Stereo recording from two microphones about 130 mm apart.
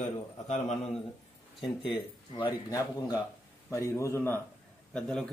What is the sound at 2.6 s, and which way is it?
A man's voice, 25° left (ahead or behind).